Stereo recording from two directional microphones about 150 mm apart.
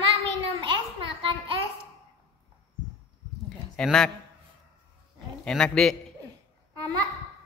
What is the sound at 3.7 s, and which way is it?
Speech, 5° left (ahead or behind).